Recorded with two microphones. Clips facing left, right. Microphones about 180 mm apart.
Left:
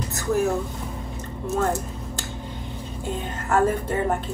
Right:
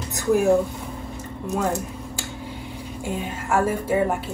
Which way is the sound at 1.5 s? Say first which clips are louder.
Even; 15° right (ahead or behind).